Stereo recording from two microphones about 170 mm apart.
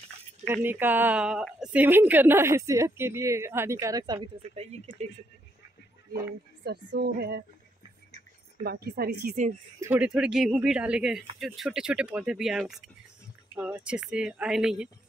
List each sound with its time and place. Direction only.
0.5 s a woman's voice: 10° right (ahead or behind)
6.6 s a woman's voice: 70° right (ahead or behind)
8.6 s a woman's voice: 65° right (ahead or behind)
9.8 s speech: 10° right (ahead or behind)